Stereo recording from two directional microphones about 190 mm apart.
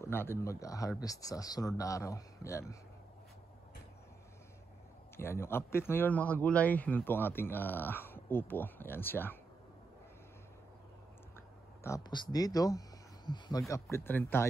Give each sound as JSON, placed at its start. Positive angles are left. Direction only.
{"t": 0.0, "sound": "a man's voice", "side_deg": 10}
{"t": 5.1, "sound": "a man's voice", "side_deg": 10}
{"t": 11.8, "sound": "a man's voice", "side_deg": 20}